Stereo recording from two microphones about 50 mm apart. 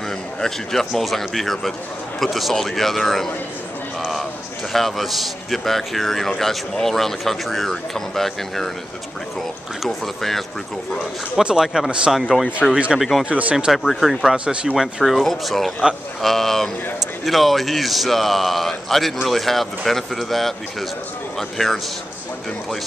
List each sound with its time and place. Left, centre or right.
0.4 s a man's voice: centre
4.0 s a sound: centre
4.7 s a man's voice: centre
9.8 s a man's voice: centre
11.7 s speech: centre
12.1 s a man's voice: centre
12.7 s speech: right
13.7 s a man's voice: centre
14.2 s speech: right
14.8 s a man's voice: centre